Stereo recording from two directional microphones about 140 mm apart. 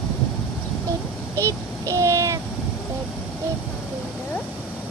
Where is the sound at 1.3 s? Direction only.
20° right (ahead or behind).